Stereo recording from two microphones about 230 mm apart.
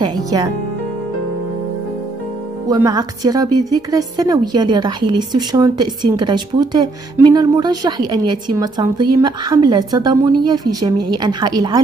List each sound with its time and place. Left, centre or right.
0.0 s a woman's voice: centre
2.7 s a woman's voice: centre